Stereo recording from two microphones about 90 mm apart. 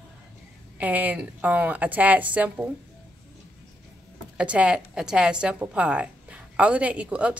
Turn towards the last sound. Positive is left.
turn(degrees=-15)  # may be behind; listen again after turning